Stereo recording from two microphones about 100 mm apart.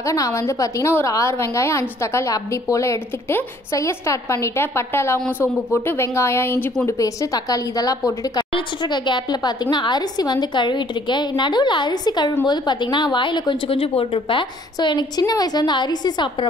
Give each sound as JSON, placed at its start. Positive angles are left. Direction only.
{"t": 0.0, "sound": "a woman's voice", "side_deg": 35}
{"t": 8.5, "sound": "speech", "side_deg": 50}
{"t": 14.8, "sound": "speech", "side_deg": 45}